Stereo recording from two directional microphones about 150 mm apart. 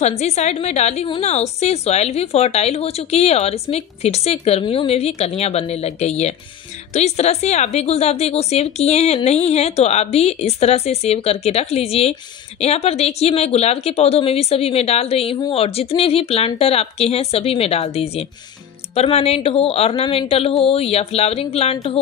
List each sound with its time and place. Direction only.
0.2 s a woman's voice: 50° left (ahead or behind)